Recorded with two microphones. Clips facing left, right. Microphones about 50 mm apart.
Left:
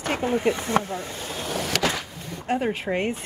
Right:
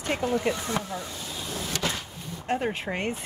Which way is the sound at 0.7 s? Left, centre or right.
Left.